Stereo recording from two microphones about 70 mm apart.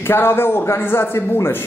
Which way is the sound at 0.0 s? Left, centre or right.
Left.